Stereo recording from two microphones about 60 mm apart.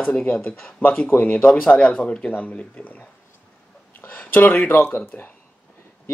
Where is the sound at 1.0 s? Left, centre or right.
Left.